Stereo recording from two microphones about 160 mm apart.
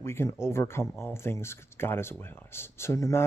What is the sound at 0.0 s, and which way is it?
Speech, 15° left (ahead or behind).